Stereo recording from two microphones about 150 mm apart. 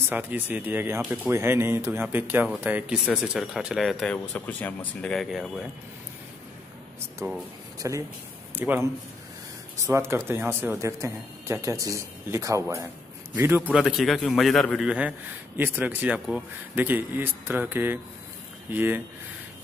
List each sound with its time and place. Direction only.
0.1 s a man's voice: 10° right (ahead or behind)
7.2 s a man's voice: 15° right (ahead or behind)
9.8 s a man's voice: 15° right (ahead or behind)